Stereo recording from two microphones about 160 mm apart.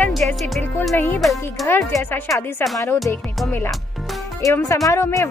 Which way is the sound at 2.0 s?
15° left (ahead or behind).